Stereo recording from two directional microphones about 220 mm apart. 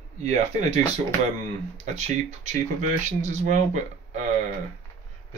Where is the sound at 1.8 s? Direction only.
30° right (ahead or behind).